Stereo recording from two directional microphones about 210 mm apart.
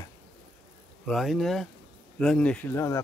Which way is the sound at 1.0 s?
Centre (ahead or behind).